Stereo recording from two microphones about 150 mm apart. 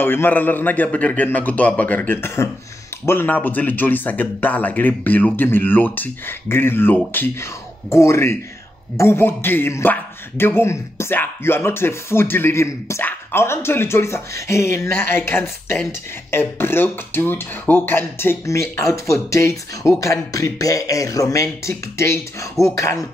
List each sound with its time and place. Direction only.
0.0 s a man's voice: 15° left (ahead or behind)